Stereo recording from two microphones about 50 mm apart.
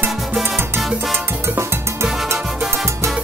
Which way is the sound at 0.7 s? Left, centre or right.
Centre.